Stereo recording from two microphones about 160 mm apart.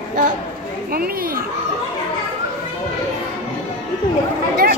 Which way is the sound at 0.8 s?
65° right (ahead or behind).